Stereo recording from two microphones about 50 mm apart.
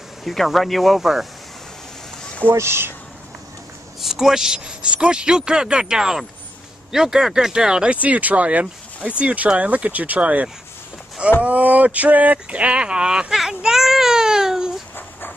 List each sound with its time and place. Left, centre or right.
0.2 s speech: centre
2.5 s speech: right
4.0 s speech: centre
7.9 s speech: right
11.4 s a sound: right; by 14.7 s centre